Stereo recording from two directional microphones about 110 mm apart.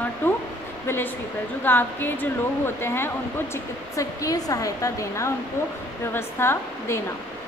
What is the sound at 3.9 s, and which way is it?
A woman's voice, 30° left (ahead or behind).